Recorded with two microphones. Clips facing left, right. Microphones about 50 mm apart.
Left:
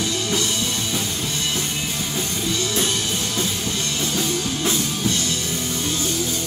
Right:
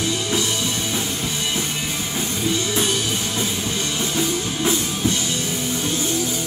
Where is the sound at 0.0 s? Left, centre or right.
Centre.